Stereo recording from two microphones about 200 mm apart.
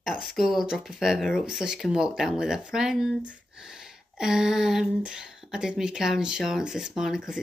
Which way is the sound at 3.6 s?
5° right (ahead or behind).